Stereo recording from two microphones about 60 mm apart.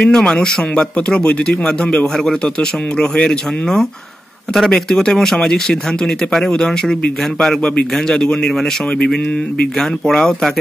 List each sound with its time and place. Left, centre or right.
0.0 s speech: centre